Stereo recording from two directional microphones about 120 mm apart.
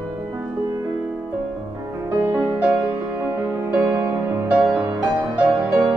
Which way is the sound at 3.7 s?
20° right (ahead or behind).